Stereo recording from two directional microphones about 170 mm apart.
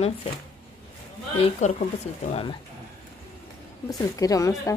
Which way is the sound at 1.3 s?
40° left (ahead or behind).